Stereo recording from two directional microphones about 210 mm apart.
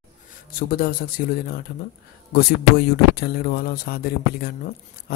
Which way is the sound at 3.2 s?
50° left (ahead or behind).